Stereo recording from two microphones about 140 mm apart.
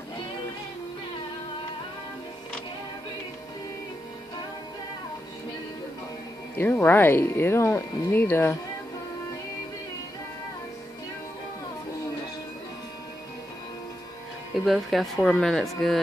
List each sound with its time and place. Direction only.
6.5 s speech: 15° left (ahead or behind)
14.5 s speech: centre (ahead or behind)